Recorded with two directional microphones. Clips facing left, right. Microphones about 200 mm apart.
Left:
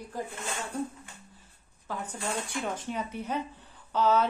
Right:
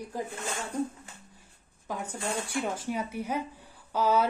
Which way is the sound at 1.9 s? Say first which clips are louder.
Right 1 dB; 10° right (ahead or behind).